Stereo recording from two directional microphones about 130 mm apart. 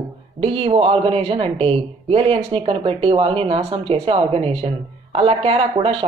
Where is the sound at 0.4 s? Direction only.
45° right (ahead or behind).